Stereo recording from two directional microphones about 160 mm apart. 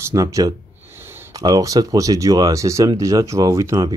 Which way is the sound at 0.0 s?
20° right (ahead or behind).